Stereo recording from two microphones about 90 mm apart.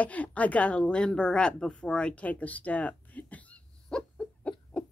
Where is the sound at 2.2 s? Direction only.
15° left (ahead or behind).